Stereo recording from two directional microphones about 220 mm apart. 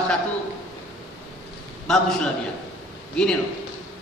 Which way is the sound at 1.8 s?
Centre (ahead or behind).